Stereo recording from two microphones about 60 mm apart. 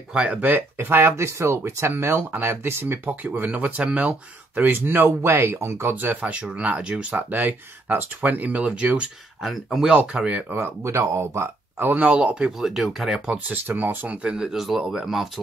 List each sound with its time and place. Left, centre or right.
0.1 s speech: centre
3.4 s speech: right
5.9 s speech: right
7.1 s speech: right
9.4 s speech: centre
9.8 s speech: centre
10.5 s speech: right
10.9 s speech: right
11.9 s speech: right
12.5 s speech: centre
13.5 s speech: right
14.1 s speech: centre
14.6 s speech: centre